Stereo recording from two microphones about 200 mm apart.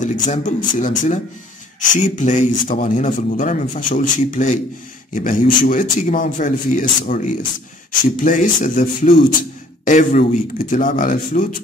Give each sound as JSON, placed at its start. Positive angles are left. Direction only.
{"t": 0.0, "sound": "speech", "side_deg": 40}